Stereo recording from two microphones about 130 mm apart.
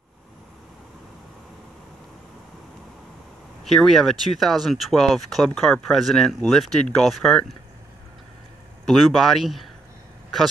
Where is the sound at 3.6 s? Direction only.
Centre (ahead or behind).